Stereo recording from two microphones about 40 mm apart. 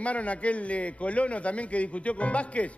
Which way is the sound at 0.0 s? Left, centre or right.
Left.